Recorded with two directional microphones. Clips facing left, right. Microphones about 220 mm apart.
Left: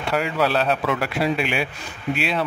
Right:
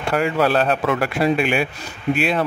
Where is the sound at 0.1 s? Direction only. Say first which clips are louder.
Right 3 dB; 50° right (ahead or behind).